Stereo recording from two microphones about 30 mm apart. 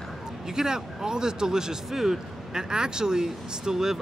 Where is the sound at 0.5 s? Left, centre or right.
Centre.